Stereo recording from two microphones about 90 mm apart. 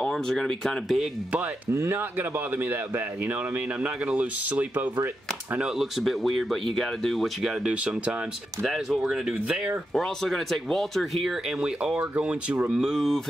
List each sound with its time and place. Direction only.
0.0 s speech: 5° left (ahead or behind)
1.7 s speech: 25° right (ahead or behind)
5.6 s speech: 5° right (ahead or behind)
7.6 s speech: 10° right (ahead or behind)
8.6 s speech: centre (ahead or behind)
9.9 s speech: 5° left (ahead or behind); by 12.7 s 15° right (ahead or behind)
12.7 s speech: centre (ahead or behind)